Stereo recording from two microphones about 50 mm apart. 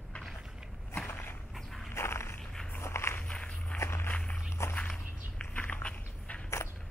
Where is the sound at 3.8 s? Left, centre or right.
Left.